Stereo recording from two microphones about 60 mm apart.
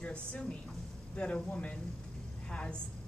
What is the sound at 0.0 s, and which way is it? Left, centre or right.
Speech, centre.